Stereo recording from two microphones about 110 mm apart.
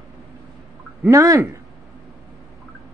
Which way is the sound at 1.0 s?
30° right (ahead or behind).